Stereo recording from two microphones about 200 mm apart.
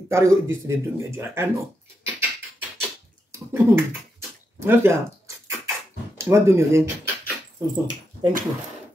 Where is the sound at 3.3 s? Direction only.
15° right (ahead or behind).